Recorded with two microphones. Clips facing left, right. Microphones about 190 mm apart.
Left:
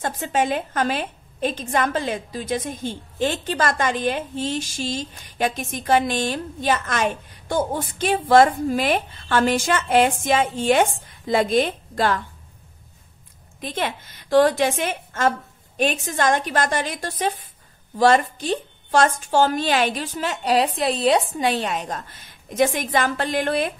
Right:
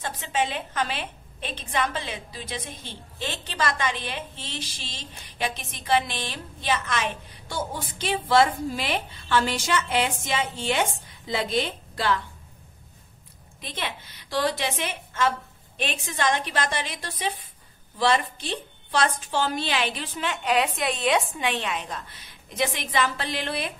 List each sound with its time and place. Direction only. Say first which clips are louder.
0.0 s a woman's voice: left 5 dB; 45° left (ahead or behind)
13.6 s a woman's voice: left 7 dB; 50° left (ahead or behind)